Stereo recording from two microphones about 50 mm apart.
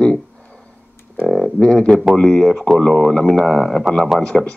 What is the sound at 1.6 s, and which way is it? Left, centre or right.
Speech, centre.